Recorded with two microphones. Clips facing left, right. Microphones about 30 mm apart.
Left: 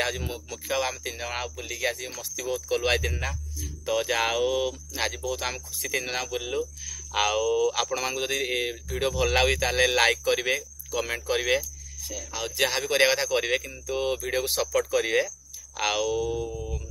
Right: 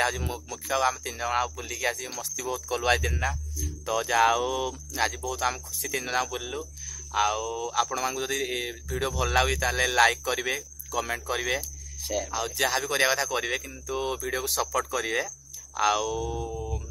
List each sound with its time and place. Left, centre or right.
0.0 s speech: centre
3.8 s speech: left
7.1 s speech: left
8.4 s speech: left
9.2 s speech: left
9.8 s speech: left
11.6 s a sound: right
12.3 s speech: left
16.4 s mantra: centre